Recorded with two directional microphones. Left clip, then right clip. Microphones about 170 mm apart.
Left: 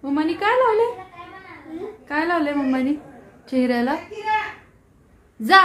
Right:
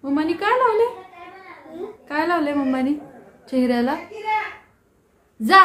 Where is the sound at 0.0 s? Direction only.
10° left (ahead or behind).